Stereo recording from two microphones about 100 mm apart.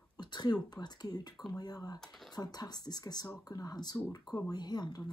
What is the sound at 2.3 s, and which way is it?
Speech, 40° left (ahead or behind).